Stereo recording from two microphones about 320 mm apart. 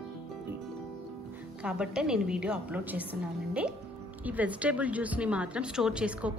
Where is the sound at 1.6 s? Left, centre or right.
Centre.